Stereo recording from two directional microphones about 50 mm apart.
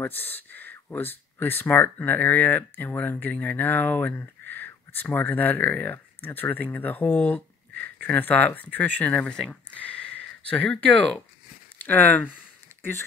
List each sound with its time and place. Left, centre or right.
0.0 s speech: left
9.1 s speech: centre
9.8 s a sound: left
10.8 s speech: left
11.8 s speech: left